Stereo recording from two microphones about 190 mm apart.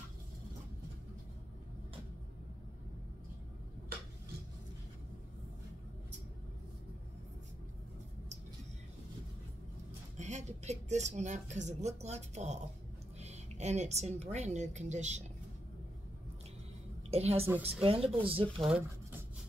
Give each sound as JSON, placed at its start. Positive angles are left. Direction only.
{"t": 10.1, "sound": "speech", "side_deg": -35}
{"t": 17.1, "sound": "speech", "side_deg": -35}
{"t": 18.6, "sound": "speech", "side_deg": -5}